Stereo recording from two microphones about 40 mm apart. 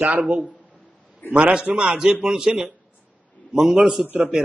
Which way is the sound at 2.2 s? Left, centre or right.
Centre.